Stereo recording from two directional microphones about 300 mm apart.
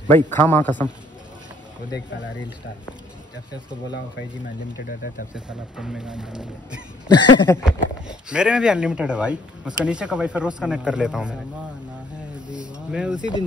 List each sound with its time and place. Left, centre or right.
0.1 s a man's voice: centre
4.7 s speech: left
5.3 s speech: centre
7.1 s a man's voice: centre
7.6 s speech: centre
12.5 s a sound: centre